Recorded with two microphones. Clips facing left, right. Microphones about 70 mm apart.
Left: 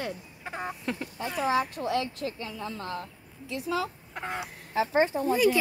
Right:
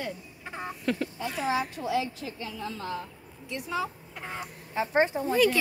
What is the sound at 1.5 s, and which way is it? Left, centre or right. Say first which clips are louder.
Speech: left 1 dB; left.